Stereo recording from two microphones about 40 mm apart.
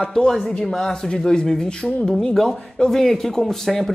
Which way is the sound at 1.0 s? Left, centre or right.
Left.